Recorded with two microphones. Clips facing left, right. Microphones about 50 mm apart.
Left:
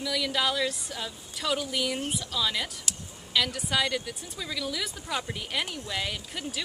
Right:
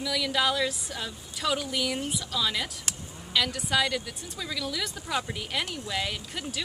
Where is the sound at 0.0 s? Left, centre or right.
Centre.